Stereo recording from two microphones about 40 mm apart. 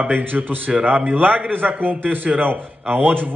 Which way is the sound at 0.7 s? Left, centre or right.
Right.